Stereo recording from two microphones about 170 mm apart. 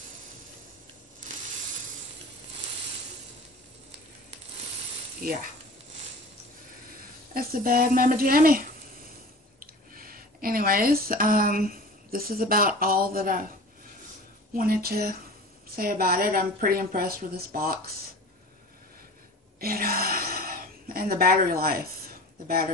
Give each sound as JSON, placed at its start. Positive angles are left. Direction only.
{"t": 7.3, "sound": "a woman's voice", "side_deg": -60}
{"t": 9.9, "sound": "speech", "side_deg": -60}
{"t": 14.5, "sound": "a woman's voice", "side_deg": -60}
{"t": 19.6, "sound": "a sound", "side_deg": -60}